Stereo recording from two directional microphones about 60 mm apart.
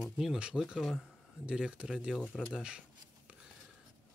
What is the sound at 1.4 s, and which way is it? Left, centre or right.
Speech, centre.